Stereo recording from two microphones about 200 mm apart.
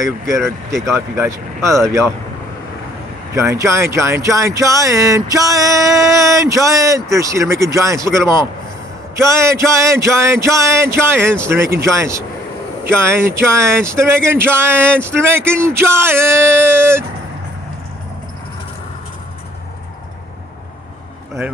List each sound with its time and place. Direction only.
0.9 s speech: 15° right (ahead or behind)
3.3 s speech: 15° right (ahead or behind)